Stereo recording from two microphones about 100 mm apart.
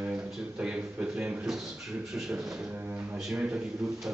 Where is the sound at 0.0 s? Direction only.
15° right (ahead or behind).